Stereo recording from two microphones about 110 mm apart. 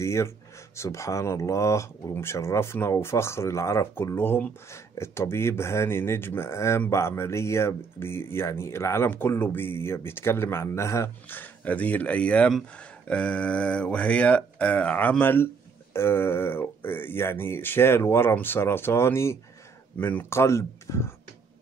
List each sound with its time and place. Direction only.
0.0 s speech: 25° left (ahead or behind)